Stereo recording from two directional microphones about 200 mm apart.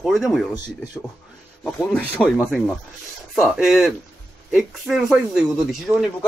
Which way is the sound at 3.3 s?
Centre (ahead or behind).